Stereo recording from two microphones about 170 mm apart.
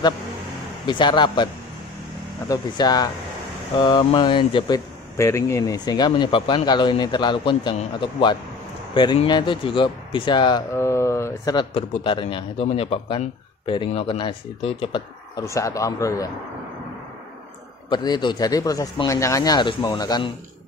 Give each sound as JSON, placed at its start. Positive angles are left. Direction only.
{"t": 0.8, "sound": "speech", "side_deg": 25}
{"t": 10.7, "sound": "a sound", "side_deg": 15}
{"t": 11.5, "sound": "a man's voice", "side_deg": 30}
{"t": 15.4, "sound": "speech", "side_deg": 20}
{"t": 17.8, "sound": "speech", "side_deg": 25}